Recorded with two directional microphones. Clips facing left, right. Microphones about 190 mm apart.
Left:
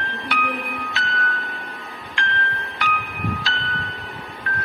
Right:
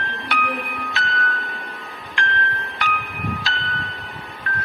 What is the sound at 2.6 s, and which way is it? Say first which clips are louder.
Music: even; centre (ahead or behind).